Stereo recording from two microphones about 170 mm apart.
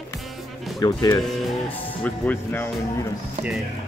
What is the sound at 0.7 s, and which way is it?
Speech, 25° left (ahead or behind).